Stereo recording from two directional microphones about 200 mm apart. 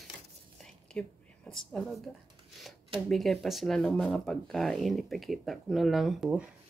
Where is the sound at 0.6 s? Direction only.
5° left (ahead or behind).